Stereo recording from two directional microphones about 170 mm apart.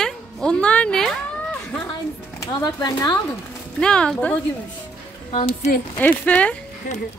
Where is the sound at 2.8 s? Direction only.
25° left (ahead or behind).